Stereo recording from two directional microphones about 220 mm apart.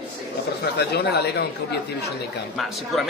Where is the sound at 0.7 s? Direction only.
50° left (ahead or behind).